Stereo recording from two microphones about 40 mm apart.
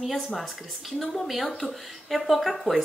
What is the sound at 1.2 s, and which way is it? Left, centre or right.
A woman's voice, centre.